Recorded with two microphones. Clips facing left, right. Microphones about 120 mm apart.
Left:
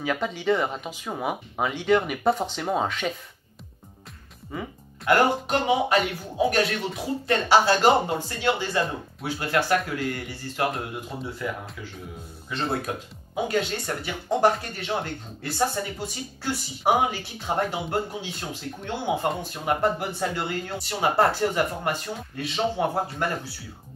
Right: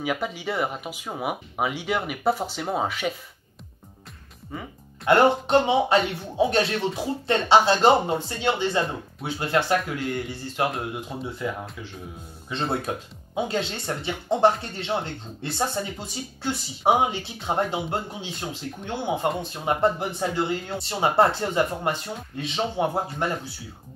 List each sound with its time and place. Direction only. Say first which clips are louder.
0.0 s speech: left 1 dB; 10° right (ahead or behind)
4.5 s speech: left 2 dB; centre (ahead or behind)
5.0 s speech: right 3 dB; 30° right (ahead or behind)
12.4 s speech: right 1 dB; 25° right (ahead or behind)